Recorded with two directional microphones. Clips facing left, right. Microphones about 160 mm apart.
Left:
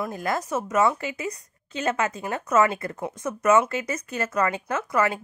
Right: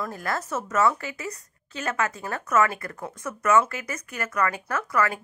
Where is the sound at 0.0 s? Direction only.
15° left (ahead or behind).